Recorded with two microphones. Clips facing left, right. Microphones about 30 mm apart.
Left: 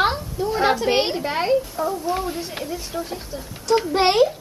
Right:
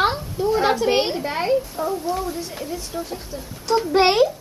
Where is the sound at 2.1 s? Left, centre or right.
Left.